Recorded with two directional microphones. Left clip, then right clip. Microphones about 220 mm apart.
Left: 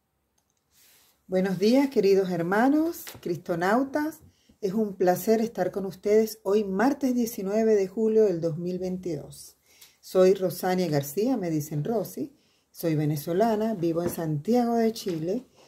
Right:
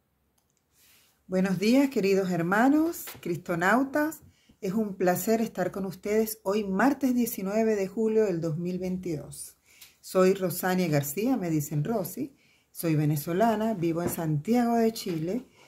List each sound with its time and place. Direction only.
1.3 s speech: 15° right (ahead or behind)